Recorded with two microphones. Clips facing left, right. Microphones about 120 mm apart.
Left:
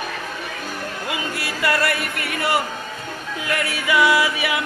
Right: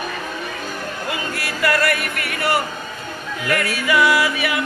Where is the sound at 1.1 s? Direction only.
25° left (ahead or behind).